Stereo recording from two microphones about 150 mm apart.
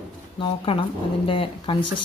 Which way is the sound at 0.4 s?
35° left (ahead or behind).